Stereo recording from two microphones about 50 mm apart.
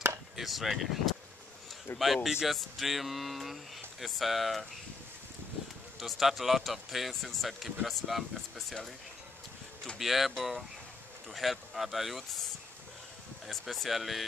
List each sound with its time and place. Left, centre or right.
0.4 s speech: centre
1.9 s speech: left
2.2 s speech: centre
5.9 s speech: centre
9.9 s speech: centre
13.5 s speech: centre